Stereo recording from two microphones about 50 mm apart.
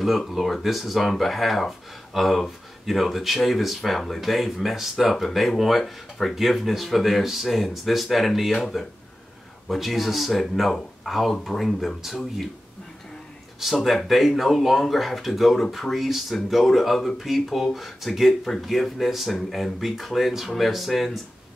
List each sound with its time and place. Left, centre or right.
0.3 s speech: centre
9.7 s speech: centre
13.6 s speech: centre